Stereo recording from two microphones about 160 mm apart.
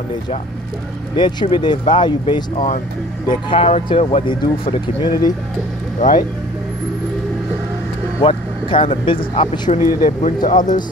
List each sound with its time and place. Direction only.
1.1 s speech: 30° left (ahead or behind)
5.9 s speech: 60° left (ahead or behind)
8.2 s speech: 35° left (ahead or behind)
9.8 s speech: 60° left (ahead or behind)